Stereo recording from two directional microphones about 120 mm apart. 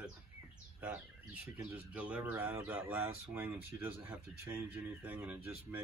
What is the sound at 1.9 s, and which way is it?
Speech, 10° right (ahead or behind).